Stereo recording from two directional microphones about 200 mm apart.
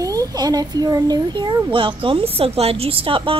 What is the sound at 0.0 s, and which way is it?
Speech, 15° right (ahead or behind).